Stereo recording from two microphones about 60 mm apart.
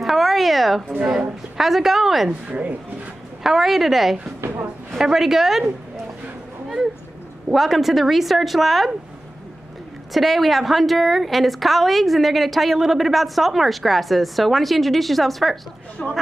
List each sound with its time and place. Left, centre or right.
0.0 s a sound: centre
1.6 s a woman's voice: centre
2.4 s speech: right
3.4 s a woman's voice: centre
7.5 s a woman's voice: centre
10.1 s a woman's voice: centre
16.0 s speech: centre